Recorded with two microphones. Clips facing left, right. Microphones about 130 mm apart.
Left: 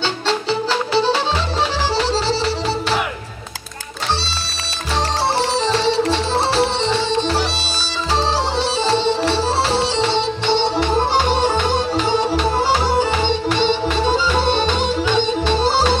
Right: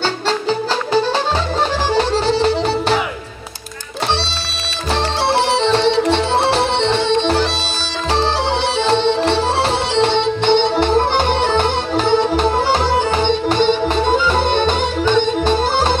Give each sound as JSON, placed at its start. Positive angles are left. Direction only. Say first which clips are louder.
{"t": 0.3, "sound": "music", "louder": "even", "side_deg": -45}
{"t": 5.3, "sound": "music", "louder": "right 6 dB", "side_deg": -60}
{"t": 8.7, "sound": "music", "louder": "right 3 dB", "side_deg": -60}